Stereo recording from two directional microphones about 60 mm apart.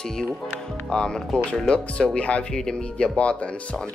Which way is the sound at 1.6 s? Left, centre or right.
Centre.